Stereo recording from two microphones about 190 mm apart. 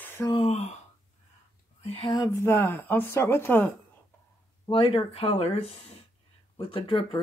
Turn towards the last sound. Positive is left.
turn(degrees=25)  # may be behind; listen again after turning